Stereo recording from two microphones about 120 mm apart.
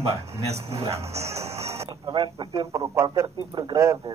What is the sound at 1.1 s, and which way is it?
Music, 60° right (ahead or behind).